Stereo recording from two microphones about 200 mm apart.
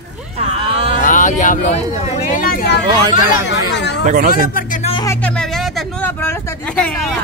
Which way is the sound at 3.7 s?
60° left (ahead or behind).